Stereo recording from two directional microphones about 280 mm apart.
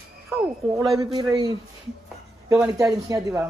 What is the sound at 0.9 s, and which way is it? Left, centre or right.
Speech, centre.